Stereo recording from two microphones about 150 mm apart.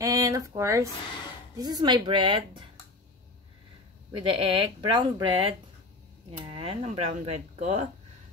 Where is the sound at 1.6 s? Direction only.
25° right (ahead or behind).